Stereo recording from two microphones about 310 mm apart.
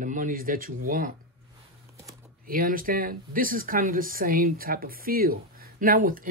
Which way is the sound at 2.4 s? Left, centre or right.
Right.